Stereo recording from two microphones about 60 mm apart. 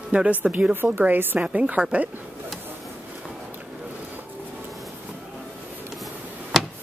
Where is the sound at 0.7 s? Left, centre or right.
Right.